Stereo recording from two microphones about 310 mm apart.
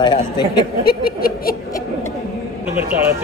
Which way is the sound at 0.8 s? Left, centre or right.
Left.